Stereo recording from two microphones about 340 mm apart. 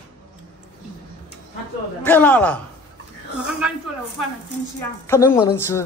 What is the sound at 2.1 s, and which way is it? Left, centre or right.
Speech, centre.